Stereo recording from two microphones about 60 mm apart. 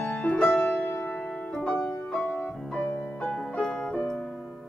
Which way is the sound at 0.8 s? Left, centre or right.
Left.